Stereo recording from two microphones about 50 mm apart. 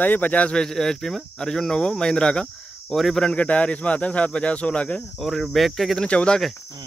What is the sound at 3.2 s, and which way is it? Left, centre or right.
Speech, left.